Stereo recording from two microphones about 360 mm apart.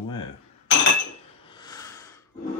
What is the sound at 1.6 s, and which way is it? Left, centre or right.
Snort, centre.